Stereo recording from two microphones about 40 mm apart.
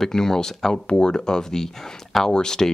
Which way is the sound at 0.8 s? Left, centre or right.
Left.